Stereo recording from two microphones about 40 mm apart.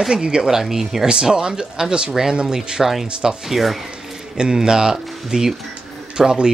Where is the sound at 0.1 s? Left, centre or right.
Centre.